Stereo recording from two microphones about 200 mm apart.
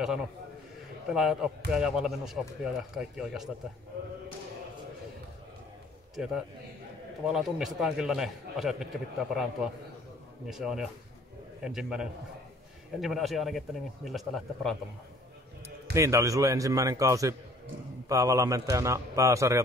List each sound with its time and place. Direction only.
1.0 s a man's voice: centre (ahead or behind)
6.1 s a man's voice: centre (ahead or behind)
15.9 s a man's voice: 15° right (ahead or behind)